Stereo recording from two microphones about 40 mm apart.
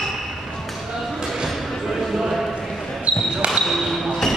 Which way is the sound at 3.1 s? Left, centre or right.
Right.